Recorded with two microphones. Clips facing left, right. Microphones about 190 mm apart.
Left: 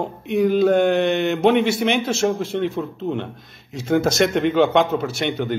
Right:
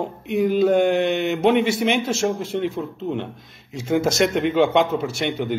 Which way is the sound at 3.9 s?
10° right (ahead or behind).